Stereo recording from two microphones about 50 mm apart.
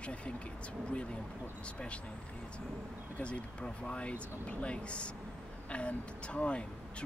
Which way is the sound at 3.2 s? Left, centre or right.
Left.